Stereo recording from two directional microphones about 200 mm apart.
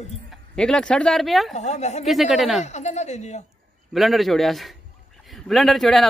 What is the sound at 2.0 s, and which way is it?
Speech, centre (ahead or behind).